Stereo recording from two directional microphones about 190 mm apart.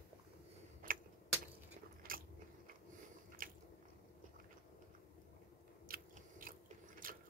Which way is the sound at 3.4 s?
45° right (ahead or behind).